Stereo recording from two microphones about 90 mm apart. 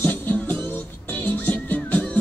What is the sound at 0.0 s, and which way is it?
Music, 20° left (ahead or behind).